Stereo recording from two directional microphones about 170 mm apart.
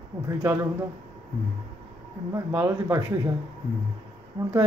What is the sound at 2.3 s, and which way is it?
Speech, 15° right (ahead or behind).